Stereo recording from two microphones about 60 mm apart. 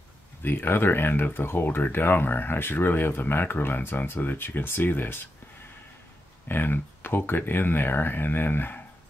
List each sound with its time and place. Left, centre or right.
0.4 s speech: left
6.5 s speech: left